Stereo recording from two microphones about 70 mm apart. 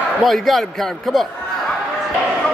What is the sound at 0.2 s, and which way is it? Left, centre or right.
Speech, centre.